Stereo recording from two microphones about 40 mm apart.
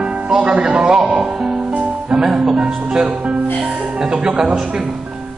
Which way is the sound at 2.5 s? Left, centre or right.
Right.